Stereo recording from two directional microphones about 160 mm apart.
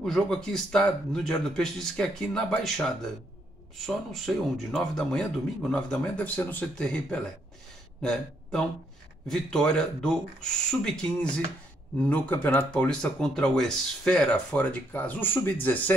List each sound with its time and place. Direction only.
0.0 s speech: 5° left (ahead or behind)